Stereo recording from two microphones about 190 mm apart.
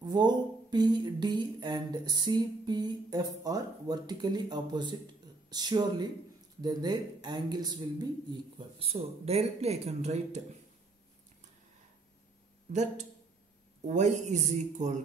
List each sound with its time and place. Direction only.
0.0 s speech: 25° right (ahead or behind)
13.8 s speech: 40° right (ahead or behind)